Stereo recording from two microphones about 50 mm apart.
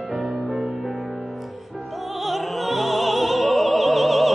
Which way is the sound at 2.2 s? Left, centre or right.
Centre.